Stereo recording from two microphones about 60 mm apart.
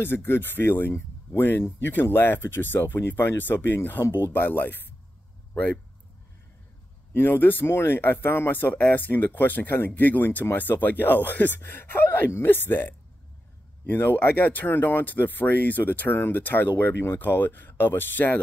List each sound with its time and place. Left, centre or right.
0.0 s speech: left
7.2 s speech: left